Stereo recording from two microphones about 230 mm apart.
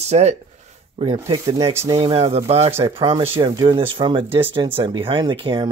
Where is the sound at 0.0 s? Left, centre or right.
Right.